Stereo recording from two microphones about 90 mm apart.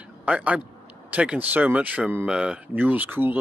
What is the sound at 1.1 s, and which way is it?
Speech, 15° right (ahead or behind).